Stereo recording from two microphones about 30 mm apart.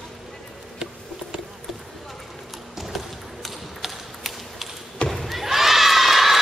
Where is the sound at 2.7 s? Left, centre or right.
Centre.